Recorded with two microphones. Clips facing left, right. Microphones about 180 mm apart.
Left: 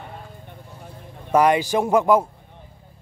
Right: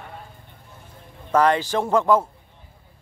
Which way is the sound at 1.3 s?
15° left (ahead or behind).